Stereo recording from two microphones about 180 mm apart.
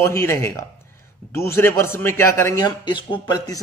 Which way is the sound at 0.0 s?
15° left (ahead or behind).